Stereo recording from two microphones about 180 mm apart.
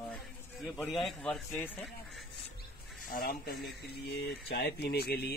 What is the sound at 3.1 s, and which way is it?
Speech, 55° left (ahead or behind).